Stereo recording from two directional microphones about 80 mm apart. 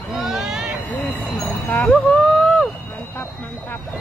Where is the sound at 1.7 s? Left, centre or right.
Centre.